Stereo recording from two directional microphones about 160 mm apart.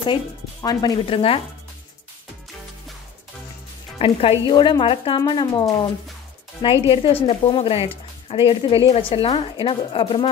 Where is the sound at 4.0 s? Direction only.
35° left (ahead or behind).